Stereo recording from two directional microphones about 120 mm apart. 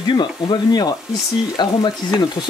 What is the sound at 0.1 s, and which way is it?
Speech, 40° left (ahead or behind).